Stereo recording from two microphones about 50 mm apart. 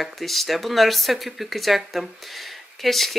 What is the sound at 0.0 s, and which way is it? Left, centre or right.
Speech, centre.